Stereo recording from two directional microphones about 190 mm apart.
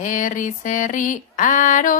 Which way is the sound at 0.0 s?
45° left (ahead or behind).